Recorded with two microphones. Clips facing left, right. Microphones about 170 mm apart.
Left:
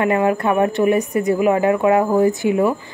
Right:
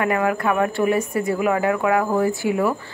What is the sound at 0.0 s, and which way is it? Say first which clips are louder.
Speech: left 3 dB; 25° left (ahead or behind).